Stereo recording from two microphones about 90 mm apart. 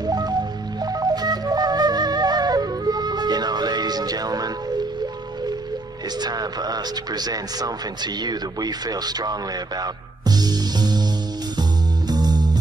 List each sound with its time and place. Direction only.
0.0 s music: 50° right (ahead or behind)
6.2 s speech: 50° right (ahead or behind)
12.1 s music: 50° right (ahead or behind)